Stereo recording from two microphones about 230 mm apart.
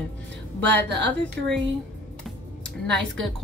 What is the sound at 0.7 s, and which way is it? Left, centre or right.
Speech, right.